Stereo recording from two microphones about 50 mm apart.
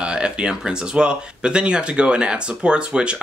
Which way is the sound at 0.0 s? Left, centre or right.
Right.